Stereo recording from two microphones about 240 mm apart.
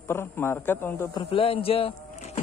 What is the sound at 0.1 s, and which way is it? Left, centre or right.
Speech, centre.